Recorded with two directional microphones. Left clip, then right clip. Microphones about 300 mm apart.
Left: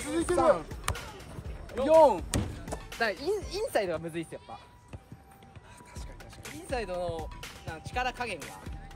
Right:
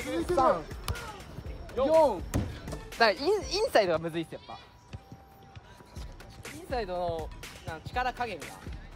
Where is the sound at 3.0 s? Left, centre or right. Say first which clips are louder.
Right 6 dB; centre.